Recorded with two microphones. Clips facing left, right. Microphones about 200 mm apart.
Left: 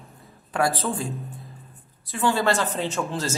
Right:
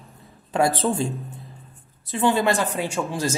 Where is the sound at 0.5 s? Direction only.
25° right (ahead or behind).